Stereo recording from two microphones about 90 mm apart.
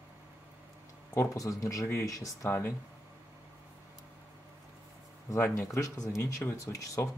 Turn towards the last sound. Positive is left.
turn(degrees=40)  # may be behind; listen again after turning